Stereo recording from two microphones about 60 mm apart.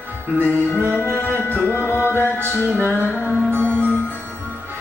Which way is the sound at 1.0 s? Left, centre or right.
Left.